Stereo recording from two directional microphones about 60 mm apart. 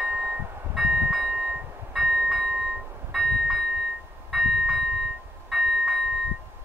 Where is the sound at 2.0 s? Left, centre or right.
Centre.